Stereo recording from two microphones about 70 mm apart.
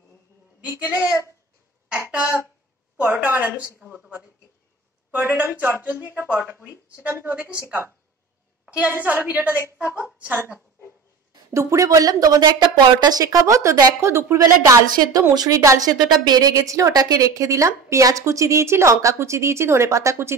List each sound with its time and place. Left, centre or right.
0.6 s speech: right
1.9 s a sound: right
3.0 s a woman's voice: right
8.6 s speech: right
11.5 s a woman's voice: right
14.0 s speech: right
14.4 s a woman's voice: right
16.9 s speech: right